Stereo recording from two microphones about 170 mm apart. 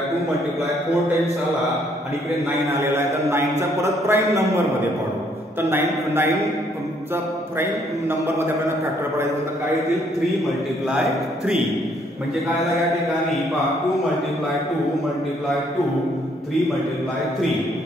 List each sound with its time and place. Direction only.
2.8 s a man's voice: 15° right (ahead or behind)